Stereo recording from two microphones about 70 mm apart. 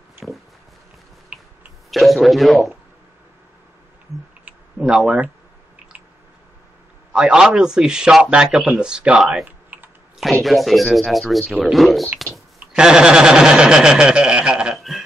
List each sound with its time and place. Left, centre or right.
1.3 s a sound: centre
1.9 s speech: centre
4.7 s speech: centre
5.0 s speech: right
7.1 s a man's voice: centre
9.7 s typing: right
10.4 s speech: centre
12.7 s a man's voice: centre
14.8 s a sound: centre